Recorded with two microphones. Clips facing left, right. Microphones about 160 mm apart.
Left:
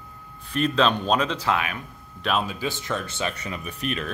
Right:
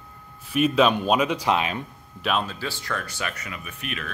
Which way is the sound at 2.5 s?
20° left (ahead or behind).